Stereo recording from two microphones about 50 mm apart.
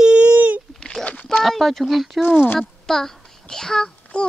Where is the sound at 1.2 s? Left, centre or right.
Centre.